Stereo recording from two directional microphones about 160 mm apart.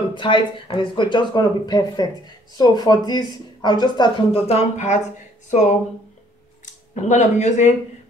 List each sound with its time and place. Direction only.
0.1 s speech: 30° left (ahead or behind)
6.6 s speech: 50° left (ahead or behind)